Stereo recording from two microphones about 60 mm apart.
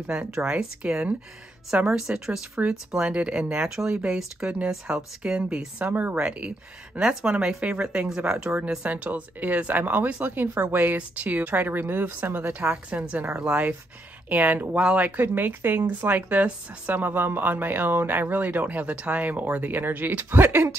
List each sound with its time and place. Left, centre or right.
0.3 s speech: centre
5.9 s speech: right
6.1 s speech: centre
8.8 s speech: right
12.5 s speech: centre; by 20.7 s right